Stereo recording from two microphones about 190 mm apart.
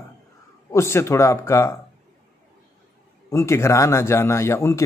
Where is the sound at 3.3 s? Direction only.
15° left (ahead or behind).